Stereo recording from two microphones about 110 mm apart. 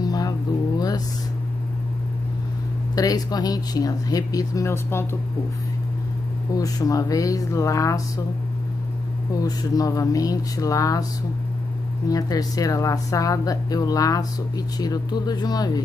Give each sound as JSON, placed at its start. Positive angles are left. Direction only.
{"t": 0.0, "sound": "a sound", "side_deg": 35}
{"t": 3.0, "sound": "speech", "side_deg": 35}
{"t": 6.5, "sound": "speech", "side_deg": 35}
{"t": 9.3, "sound": "speech", "side_deg": 35}
{"t": 12.1, "sound": "speech", "side_deg": 35}